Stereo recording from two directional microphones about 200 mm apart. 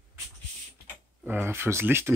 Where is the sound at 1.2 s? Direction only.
10° right (ahead or behind).